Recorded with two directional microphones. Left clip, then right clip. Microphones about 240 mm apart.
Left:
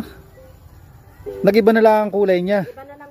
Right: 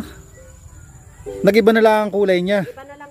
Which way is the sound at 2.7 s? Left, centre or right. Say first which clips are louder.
Even; left.